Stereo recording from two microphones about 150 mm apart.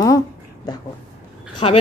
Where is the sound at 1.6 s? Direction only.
40° left (ahead or behind).